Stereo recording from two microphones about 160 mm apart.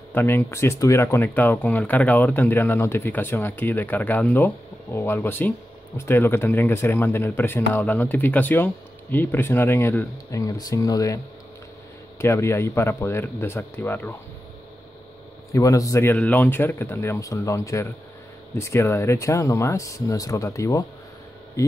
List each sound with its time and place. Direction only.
0.1 s speech: 15° left (ahead or behind)
12.2 s speech: 15° left (ahead or behind)
15.5 s speech: 20° left (ahead or behind)